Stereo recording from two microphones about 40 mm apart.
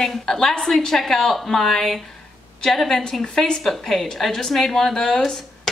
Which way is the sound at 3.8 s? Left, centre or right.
Centre.